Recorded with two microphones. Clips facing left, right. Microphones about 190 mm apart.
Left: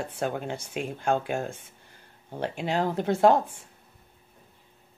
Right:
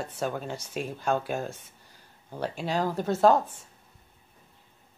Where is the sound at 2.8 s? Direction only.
20° left (ahead or behind).